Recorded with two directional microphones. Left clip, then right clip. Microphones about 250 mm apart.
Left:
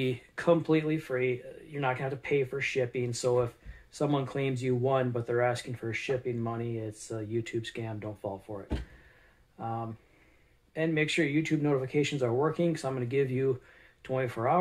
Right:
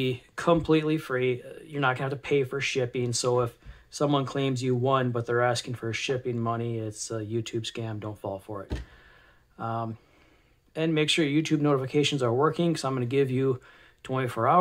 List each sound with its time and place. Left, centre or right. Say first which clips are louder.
0.0 s speech: right 2 dB; centre